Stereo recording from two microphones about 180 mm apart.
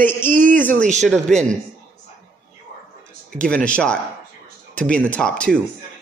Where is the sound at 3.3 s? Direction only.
5° left (ahead or behind).